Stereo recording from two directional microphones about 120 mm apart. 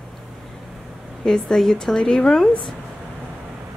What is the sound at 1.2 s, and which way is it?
A woman's voice, 5° left (ahead or behind).